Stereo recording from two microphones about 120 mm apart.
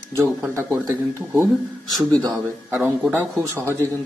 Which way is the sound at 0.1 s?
20° right (ahead or behind).